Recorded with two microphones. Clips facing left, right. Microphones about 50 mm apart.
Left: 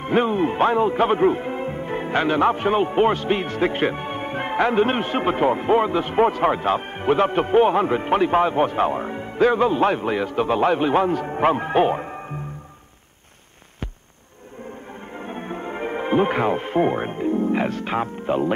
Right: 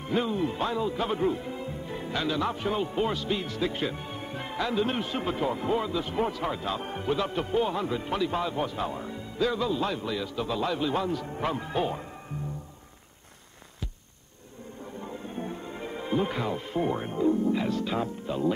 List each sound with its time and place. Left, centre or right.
0.0 s a man's voice: left
15.1 s speech: left